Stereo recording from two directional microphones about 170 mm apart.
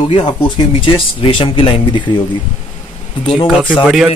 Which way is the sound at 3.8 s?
5° right (ahead or behind).